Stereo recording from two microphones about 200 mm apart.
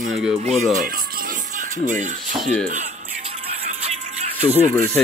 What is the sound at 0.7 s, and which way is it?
Music, 45° right (ahead or behind).